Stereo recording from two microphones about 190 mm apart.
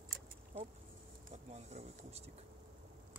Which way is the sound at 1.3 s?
35° right (ahead or behind).